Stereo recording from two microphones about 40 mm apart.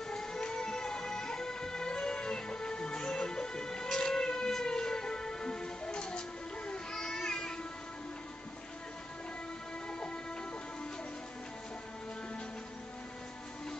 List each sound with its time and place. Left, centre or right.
0.1 s music: centre
6.7 s a sound: centre
9.8 s train: left